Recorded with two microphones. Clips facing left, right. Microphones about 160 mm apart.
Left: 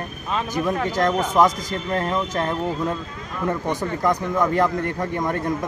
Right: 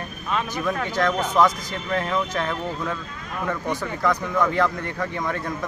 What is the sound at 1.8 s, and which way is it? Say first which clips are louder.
Speech: left 1 dB; 30° left (ahead or behind).